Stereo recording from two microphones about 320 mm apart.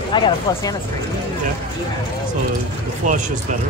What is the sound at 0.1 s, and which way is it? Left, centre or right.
Speech, centre.